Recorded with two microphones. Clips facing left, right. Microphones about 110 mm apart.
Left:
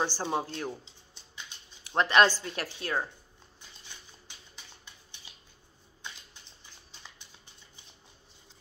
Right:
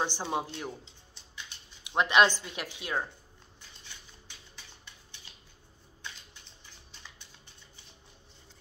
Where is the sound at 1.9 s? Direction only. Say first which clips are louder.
Left 1 dB; 10° right (ahead or behind).